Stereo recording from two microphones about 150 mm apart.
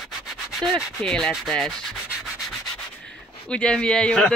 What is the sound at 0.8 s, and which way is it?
Speech, 5° left (ahead or behind).